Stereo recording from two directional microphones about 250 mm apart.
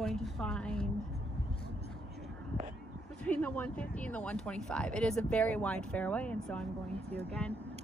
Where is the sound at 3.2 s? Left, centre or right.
Centre.